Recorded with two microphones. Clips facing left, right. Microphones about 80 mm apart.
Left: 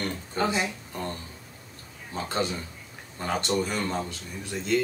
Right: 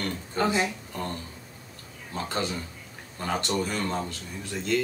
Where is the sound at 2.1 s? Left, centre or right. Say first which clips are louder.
Left 1 dB; left.